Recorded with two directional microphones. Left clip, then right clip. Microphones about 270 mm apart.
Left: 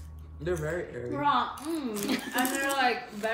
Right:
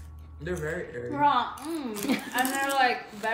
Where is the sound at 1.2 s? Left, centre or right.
Centre.